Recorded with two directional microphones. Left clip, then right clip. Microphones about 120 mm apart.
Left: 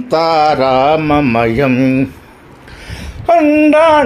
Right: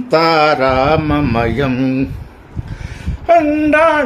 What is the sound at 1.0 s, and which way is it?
Mantra, 25° left (ahead or behind).